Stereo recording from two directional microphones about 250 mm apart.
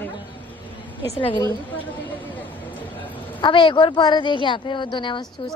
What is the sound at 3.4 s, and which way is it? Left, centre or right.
A woman's voice, centre.